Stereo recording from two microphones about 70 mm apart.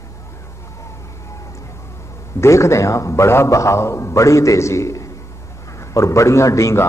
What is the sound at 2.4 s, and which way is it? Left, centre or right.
A man's voice, left.